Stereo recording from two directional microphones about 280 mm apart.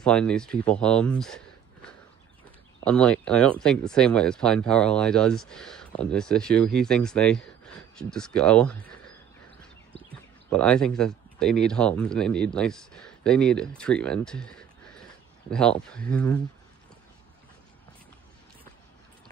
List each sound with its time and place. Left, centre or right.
0.0 s speech: centre
10.5 s speech: centre